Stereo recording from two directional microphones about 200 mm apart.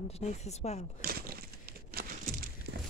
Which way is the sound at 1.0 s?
50° right (ahead or behind).